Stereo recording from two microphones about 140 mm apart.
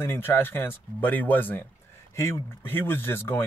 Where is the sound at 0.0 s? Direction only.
15° left (ahead or behind).